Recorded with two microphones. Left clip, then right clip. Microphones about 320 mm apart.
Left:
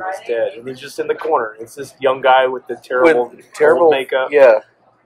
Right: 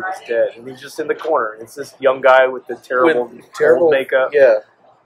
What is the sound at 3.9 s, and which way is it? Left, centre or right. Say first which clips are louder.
Speech: right 1 dB; centre.